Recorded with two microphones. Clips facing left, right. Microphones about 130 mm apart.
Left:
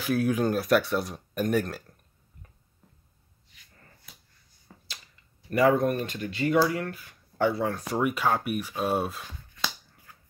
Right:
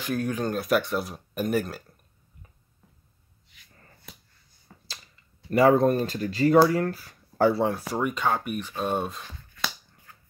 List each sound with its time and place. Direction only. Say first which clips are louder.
0.0 s speech: left 3 dB; 5° left (ahead or behind)
4.7 s finger snapping: even; centre (ahead or behind)
5.5 s speech: right 3 dB; 30° right (ahead or behind)
7.7 s speech: left 1 dB; centre (ahead or behind)